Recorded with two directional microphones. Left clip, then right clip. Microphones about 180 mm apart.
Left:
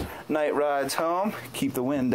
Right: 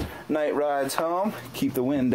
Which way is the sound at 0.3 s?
5° left (ahead or behind).